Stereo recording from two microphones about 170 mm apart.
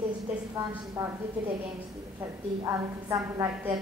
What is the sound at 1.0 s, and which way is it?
Speech, 15° right (ahead or behind).